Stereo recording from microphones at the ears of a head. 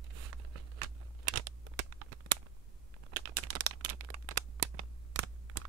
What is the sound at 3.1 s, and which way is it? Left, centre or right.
Crumpling, right.